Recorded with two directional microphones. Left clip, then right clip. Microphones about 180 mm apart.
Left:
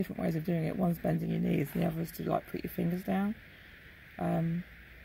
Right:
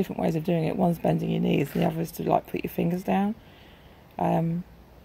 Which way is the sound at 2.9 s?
15° left (ahead or behind).